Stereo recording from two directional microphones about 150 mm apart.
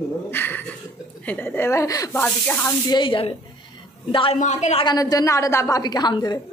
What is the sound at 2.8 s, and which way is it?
Speech, 30° left (ahead or behind).